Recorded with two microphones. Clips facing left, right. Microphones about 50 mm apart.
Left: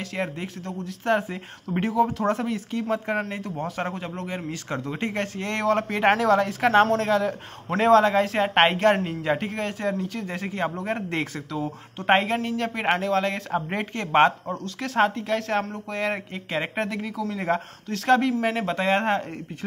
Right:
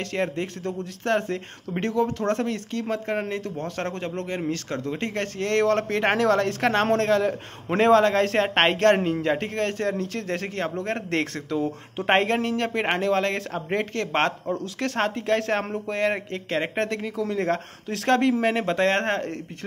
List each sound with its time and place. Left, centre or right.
0.0 s a man's voice: centre